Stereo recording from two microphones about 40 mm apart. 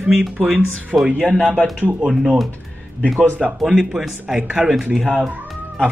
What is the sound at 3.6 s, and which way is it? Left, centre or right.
A man's voice, centre.